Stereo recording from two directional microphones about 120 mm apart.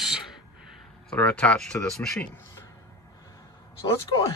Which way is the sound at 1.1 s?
10° left (ahead or behind).